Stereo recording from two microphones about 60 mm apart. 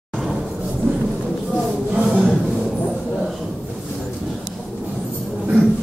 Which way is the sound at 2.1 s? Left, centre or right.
Centre.